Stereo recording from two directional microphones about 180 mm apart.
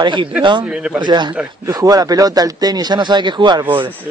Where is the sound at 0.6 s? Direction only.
5° right (ahead or behind).